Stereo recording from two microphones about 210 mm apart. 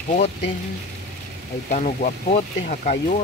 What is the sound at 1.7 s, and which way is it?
Speech, 35° left (ahead or behind).